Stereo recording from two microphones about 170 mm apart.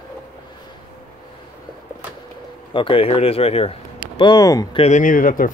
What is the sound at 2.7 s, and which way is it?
Speech, 30° left (ahead or behind).